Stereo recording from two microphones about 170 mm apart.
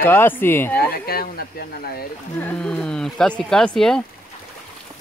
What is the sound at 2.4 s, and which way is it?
Speech, 5° left (ahead or behind).